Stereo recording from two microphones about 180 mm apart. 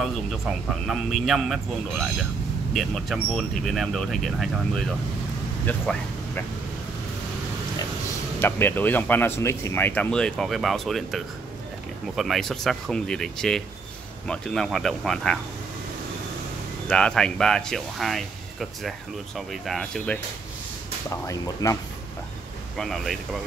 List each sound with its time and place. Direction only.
0.8 s speech: centre (ahead or behind)
2.7 s speech: centre (ahead or behind)
8.4 s speech: 10° left (ahead or behind)
16.8 s speech: 5° left (ahead or behind)
21.1 s speech: 20° left (ahead or behind)
22.8 s speech: centre (ahead or behind)